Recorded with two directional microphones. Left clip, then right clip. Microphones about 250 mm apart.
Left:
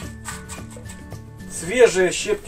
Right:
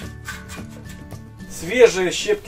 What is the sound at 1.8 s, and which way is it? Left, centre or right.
Speech, centre.